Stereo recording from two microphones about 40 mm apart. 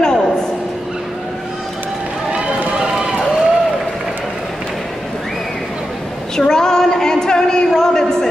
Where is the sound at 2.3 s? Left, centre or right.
Right.